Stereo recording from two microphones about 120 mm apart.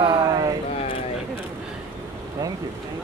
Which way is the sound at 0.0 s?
45° right (ahead or behind).